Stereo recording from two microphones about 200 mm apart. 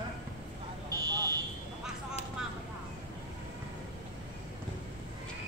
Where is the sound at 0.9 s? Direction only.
20° right (ahead or behind).